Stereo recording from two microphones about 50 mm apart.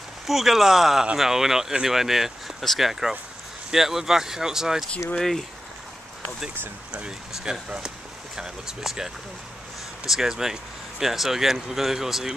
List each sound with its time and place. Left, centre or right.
0.3 s speech: centre
5.1 s speech: centre
6.9 s speech: centre